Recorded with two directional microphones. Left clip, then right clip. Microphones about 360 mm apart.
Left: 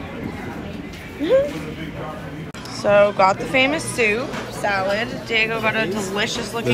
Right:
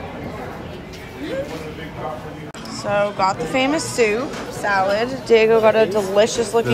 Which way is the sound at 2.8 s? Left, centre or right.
Centre.